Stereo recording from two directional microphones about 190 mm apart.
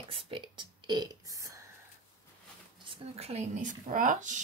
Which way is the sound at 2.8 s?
30° right (ahead or behind).